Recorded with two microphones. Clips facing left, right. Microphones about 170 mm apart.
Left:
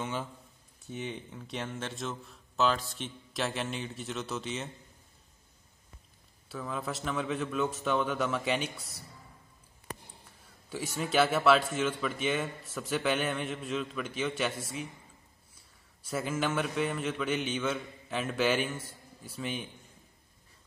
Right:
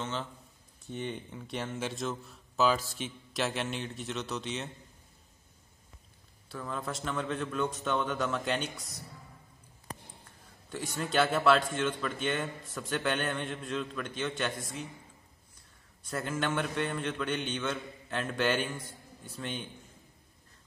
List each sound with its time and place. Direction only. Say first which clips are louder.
0.0 s a man's voice: left 1 dB; 10° left (ahead or behind)
6.5 s speech: left 1 dB; 5° left (ahead or behind)
10.7 s speech: left 1 dB; 5° left (ahead or behind)
16.0 s speech: left 2 dB; 5° left (ahead or behind)